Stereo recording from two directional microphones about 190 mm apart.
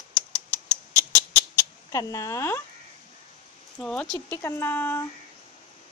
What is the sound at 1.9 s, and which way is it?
Speech, 20° left (ahead or behind).